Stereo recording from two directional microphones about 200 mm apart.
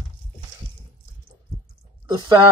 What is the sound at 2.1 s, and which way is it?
Speech, 20° right (ahead or behind).